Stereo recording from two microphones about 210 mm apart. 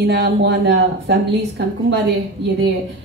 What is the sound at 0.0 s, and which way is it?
Speech, 55° right (ahead or behind).